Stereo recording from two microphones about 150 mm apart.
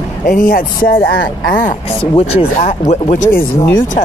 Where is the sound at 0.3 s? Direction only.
65° left (ahead or behind).